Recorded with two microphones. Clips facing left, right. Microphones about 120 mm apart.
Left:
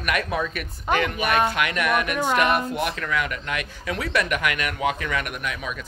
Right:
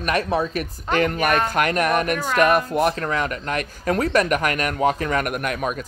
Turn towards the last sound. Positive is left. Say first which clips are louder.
# right 6 dB
turn(degrees=-50)  # may be behind; listen again after turning